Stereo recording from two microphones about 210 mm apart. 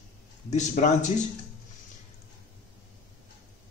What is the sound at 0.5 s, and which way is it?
Speech, 35° left (ahead or behind).